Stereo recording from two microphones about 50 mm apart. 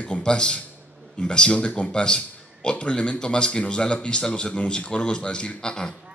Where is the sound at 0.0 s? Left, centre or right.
Left.